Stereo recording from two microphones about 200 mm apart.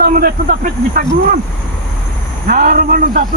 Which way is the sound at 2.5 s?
45° right (ahead or behind).